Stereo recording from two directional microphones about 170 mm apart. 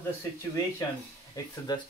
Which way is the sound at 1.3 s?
20° left (ahead or behind).